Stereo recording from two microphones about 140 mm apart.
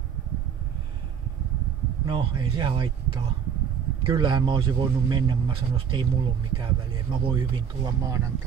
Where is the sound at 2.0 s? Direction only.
35° right (ahead or behind).